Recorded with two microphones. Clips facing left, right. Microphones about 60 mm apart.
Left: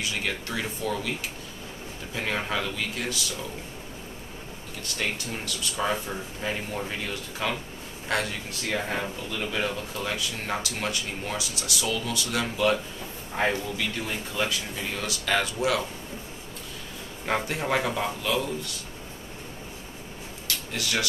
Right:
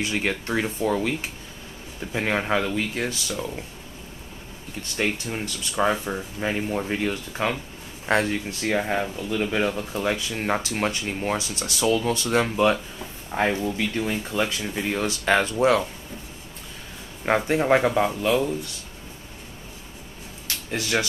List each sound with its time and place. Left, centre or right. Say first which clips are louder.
0.0 s speech: right 5 dB; right
2.1 s speech: right 5 dB; right
4.9 s speech: right 5 dB; right
13.3 s speech: right 3 dB; centre
13.7 s speech: right 5 dB; right
17.3 s speech: right 7 dB; right
20.4 s a sound: right 3 dB; right